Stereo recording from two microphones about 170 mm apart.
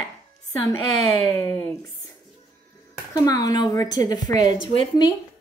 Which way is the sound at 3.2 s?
20° left (ahead or behind).